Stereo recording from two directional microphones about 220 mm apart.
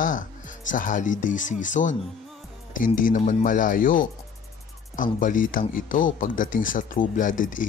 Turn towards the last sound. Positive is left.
turn(degrees=35)  # may be behind; listen again after turning